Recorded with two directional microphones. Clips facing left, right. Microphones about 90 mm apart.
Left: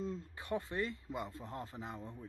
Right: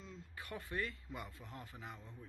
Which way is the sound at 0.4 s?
25° left (ahead or behind).